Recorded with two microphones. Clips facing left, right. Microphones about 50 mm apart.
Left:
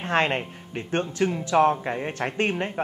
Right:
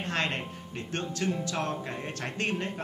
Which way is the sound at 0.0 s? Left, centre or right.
Left.